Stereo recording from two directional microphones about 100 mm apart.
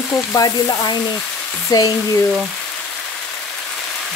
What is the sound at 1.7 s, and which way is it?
Frying, 40° left (ahead or behind).